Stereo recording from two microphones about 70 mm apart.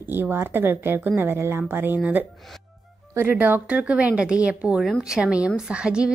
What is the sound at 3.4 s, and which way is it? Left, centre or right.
A woman's voice, right.